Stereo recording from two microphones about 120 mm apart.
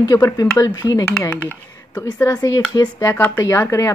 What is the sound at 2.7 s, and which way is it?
Speech, 30° left (ahead or behind).